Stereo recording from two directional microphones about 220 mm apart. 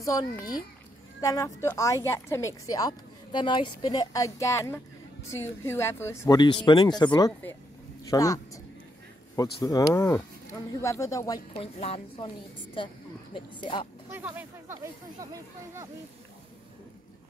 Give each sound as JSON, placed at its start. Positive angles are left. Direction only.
{"t": 0.0, "sound": "speech", "side_deg": 15}
{"t": 11.5, "sound": "a woman's voice", "side_deg": 25}
{"t": 14.1, "sound": "speech", "side_deg": -10}